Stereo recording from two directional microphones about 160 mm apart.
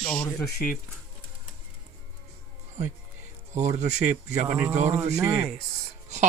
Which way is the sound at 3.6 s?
45° right (ahead or behind).